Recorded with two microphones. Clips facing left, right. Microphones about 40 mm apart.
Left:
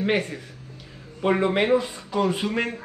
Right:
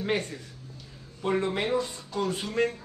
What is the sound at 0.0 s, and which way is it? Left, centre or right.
Speech, left.